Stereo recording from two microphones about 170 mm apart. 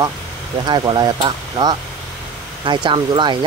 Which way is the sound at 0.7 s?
25° right (ahead or behind).